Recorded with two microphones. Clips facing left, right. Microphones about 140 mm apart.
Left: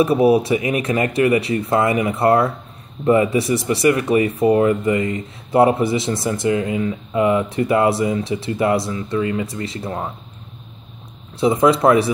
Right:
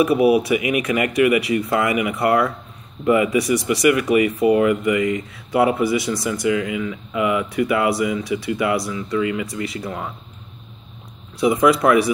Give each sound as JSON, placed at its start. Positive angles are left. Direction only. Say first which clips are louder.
{"t": 0.0, "sound": "speech", "louder": "left 1 dB", "side_deg": 30}
{"t": 11.3, "sound": "speech", "louder": "left 1 dB", "side_deg": 25}